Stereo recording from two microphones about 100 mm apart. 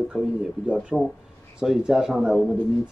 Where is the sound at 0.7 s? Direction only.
Centre (ahead or behind).